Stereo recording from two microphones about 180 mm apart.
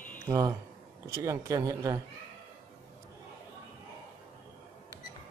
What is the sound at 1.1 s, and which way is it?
Speech, 15° right (ahead or behind).